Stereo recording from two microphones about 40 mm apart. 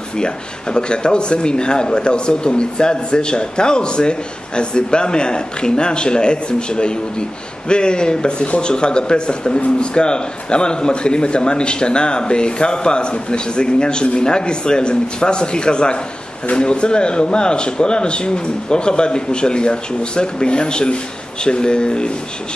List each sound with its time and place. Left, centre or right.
0.2 s speech: left